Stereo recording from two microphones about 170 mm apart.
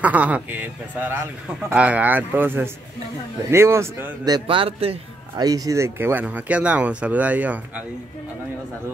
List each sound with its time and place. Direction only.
0.0 s a man's voice: 10° right (ahead or behind); by 4.9 s 35° right (ahead or behind)
5.4 s a man's voice: 20° right (ahead or behind)